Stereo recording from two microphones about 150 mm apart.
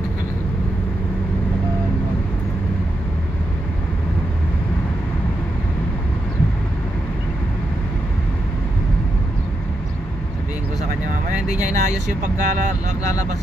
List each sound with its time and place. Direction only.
11.2 s speech: 55° right (ahead or behind)